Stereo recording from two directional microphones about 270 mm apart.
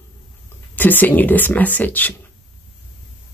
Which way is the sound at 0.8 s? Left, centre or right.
Centre.